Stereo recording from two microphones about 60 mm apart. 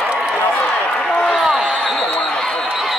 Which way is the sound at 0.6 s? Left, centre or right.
Left.